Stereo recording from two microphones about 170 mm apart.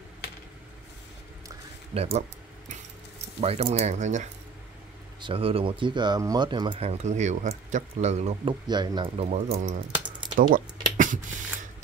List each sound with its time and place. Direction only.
2.0 s speech: 35° right (ahead or behind)
3.3 s speech: 35° right (ahead or behind)
5.2 s speech: 35° right (ahead or behind)
8.6 s speech: 25° right (ahead or behind); by 9.8 s 45° right (ahead or behind)
10.3 s a sound: 50° right (ahead or behind)